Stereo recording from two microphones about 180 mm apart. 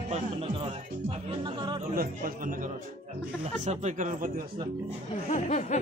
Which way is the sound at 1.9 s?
55° right (ahead or behind).